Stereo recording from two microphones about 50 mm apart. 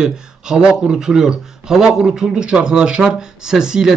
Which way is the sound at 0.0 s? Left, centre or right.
Centre.